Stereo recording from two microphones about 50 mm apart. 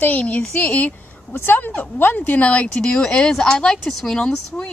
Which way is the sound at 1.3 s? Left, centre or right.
Left.